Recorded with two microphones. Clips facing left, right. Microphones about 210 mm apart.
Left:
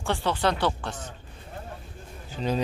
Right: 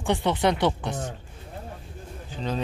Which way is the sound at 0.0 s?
20° right (ahead or behind).